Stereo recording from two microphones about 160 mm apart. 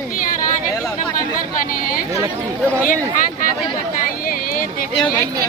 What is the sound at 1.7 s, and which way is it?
Speech, 60° left (ahead or behind).